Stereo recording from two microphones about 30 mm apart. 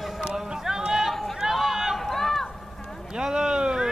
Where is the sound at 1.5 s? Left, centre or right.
Centre.